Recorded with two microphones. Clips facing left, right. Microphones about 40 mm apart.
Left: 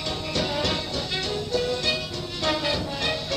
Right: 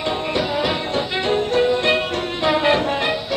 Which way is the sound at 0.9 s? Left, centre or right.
Right.